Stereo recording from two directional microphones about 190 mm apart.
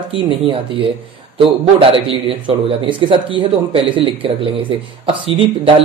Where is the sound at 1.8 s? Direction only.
30° right (ahead or behind).